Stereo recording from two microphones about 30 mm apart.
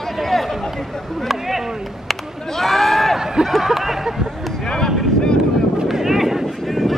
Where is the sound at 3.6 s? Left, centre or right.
Centre.